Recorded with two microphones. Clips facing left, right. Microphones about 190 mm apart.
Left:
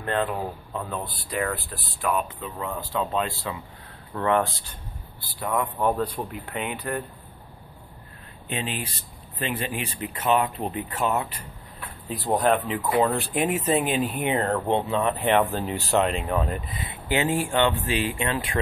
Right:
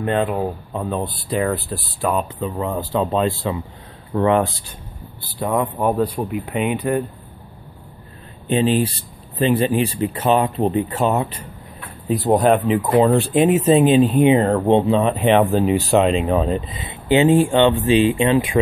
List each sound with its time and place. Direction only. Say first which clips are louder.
0.0 s speech: right 7 dB; 20° right (ahead or behind)
4.1 s speech: right 6 dB; 15° right (ahead or behind)
5.8 s speech: right 5 dB; 15° right (ahead or behind)
8.5 s speech: right 14 dB; 30° right (ahead or behind)
12.9 s speech: right 7 dB; 30° right (ahead or behind)